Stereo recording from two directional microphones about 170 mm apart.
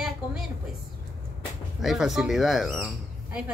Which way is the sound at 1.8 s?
Centre (ahead or behind).